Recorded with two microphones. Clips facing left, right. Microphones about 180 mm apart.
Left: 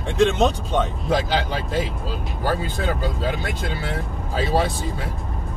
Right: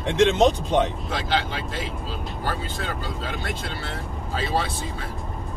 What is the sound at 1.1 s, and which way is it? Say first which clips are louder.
Speech: left 8 dB; 40° left (ahead or behind).